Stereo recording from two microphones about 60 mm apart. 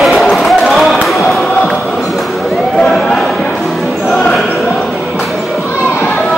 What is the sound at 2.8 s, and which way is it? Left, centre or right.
Choir, centre.